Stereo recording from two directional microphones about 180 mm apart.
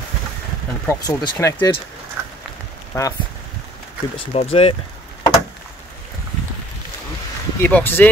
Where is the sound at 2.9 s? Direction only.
20° left (ahead or behind).